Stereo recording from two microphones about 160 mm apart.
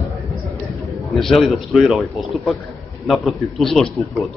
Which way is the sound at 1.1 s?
Centre (ahead or behind).